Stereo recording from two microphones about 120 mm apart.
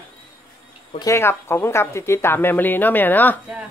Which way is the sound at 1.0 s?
25° left (ahead or behind).